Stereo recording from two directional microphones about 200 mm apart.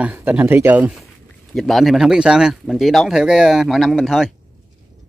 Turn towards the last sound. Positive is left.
turn(degrees=0)  # may be behind; listen again after turning